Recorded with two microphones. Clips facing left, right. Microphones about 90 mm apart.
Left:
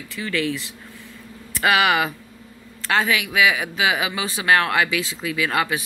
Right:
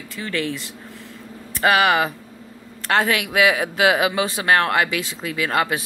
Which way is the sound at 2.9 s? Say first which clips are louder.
Right 1 dB; 50° right (ahead or behind).